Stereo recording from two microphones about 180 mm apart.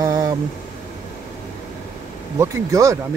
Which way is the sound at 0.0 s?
20° right (ahead or behind).